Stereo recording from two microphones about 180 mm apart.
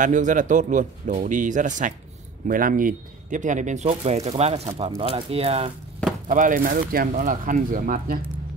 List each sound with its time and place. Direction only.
0.0 s speech: 45° right (ahead or behind)
6.2 s speech: 50° right (ahead or behind)